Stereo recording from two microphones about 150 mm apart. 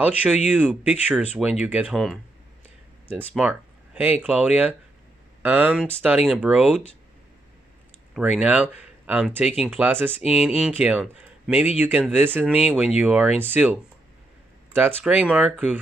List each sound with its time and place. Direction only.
0.0 s speech: 10° right (ahead or behind)
3.1 s speech: 10° right (ahead or behind)
8.1 s speech: 5° right (ahead or behind)